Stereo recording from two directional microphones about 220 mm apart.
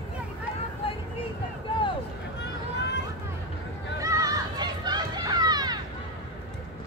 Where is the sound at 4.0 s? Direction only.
15° right (ahead or behind).